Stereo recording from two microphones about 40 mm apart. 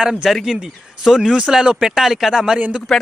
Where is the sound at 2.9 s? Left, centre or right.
Centre.